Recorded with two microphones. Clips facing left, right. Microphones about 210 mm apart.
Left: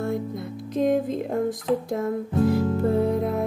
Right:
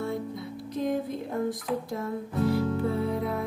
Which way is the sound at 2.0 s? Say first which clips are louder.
Left 6 dB; 45° left (ahead or behind).